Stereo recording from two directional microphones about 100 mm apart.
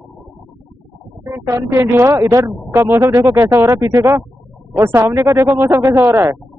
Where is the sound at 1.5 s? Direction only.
25° right (ahead or behind).